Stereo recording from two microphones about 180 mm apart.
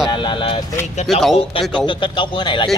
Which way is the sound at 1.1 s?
Centre (ahead or behind).